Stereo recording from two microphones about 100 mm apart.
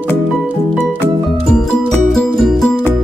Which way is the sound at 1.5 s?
5° left (ahead or behind).